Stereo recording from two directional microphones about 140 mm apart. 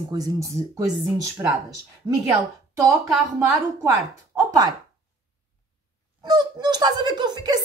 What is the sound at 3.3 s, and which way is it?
Speech, 25° right (ahead or behind).